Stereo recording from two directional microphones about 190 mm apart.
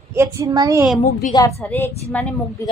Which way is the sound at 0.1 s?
15° right (ahead or behind).